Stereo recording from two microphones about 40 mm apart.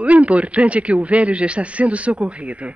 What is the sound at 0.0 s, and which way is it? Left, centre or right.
A man's voice, right.